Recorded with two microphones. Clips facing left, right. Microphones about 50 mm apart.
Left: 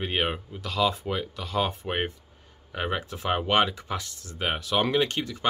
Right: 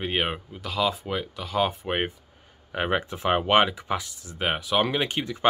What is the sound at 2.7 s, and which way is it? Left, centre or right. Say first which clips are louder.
Speech: right 4 dB; right.